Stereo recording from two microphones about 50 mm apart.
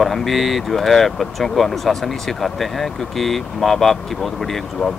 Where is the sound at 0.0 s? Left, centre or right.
Centre.